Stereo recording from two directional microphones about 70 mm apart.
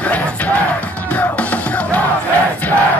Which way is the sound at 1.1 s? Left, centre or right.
Left.